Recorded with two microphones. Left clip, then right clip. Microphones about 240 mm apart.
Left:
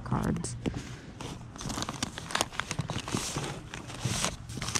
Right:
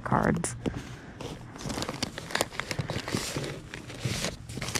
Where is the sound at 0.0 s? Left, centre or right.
Right.